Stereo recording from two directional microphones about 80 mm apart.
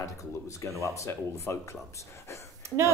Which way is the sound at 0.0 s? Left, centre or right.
Left.